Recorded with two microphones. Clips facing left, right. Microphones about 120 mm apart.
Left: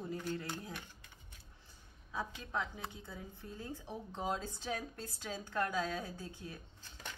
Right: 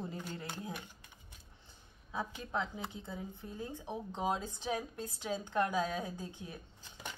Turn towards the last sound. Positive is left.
turn(degrees=-15)  # may be behind; listen again after turning